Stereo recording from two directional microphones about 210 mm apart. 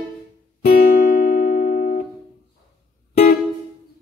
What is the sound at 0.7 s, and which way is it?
Music, 45° left (ahead or behind).